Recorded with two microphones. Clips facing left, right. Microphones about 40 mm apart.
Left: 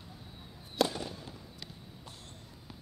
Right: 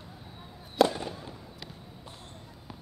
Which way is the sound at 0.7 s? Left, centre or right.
Centre.